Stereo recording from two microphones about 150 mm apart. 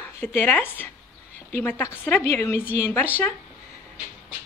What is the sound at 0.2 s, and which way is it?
Speech, 15° left (ahead or behind).